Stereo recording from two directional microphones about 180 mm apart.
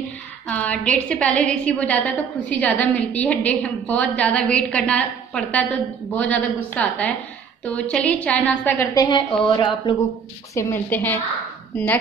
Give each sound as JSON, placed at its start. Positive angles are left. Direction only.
{"t": 0.5, "sound": "a woman's voice", "side_deg": 5}
{"t": 10.5, "sound": "a woman's voice", "side_deg": 15}